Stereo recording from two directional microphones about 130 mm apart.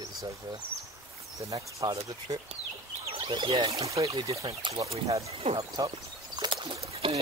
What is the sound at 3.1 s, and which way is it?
Speech, 45° right (ahead or behind).